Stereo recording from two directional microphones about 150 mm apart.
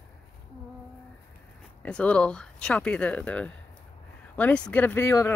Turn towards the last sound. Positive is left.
turn(degrees=15)  # may be behind; listen again after turning